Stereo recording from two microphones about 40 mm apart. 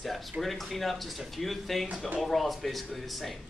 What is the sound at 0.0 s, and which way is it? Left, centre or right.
Speech, centre.